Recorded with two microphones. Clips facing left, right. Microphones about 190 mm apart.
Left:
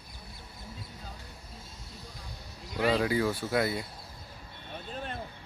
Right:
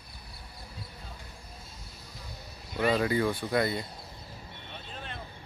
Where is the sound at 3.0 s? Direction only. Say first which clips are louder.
Right 1 dB; 5° left (ahead or behind).